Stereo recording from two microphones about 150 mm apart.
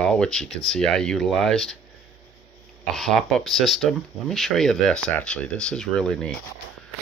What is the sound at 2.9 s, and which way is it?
Speech, centre (ahead or behind).